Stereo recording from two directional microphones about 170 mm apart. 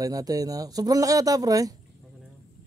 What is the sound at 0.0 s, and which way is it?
Speech, 20° right (ahead or behind).